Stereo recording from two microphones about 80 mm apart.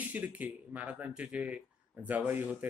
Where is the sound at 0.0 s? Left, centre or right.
Right.